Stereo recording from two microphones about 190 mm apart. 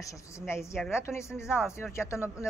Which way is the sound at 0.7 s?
5° right (ahead or behind).